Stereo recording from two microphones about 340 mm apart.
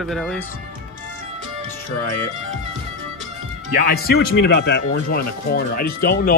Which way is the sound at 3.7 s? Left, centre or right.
Left.